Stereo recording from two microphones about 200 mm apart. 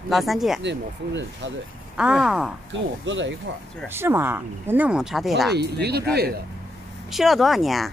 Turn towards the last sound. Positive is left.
turn(degrees=0)  # may be behind; listen again after turning